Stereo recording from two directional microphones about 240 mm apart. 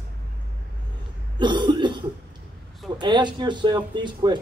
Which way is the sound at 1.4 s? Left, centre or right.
Centre.